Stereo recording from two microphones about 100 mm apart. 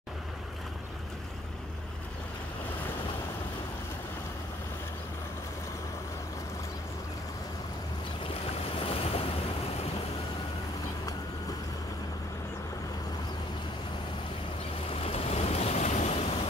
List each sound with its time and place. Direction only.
8.7 s waves: 70° left (ahead or behind)
14.9 s waves: 85° left